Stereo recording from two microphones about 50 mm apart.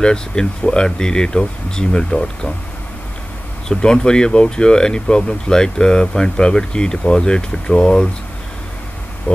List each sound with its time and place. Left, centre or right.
0.0 s speech: centre
3.6 s speech: centre